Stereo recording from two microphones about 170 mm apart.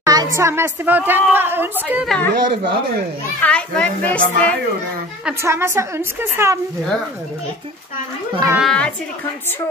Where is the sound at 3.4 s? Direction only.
5° left (ahead or behind).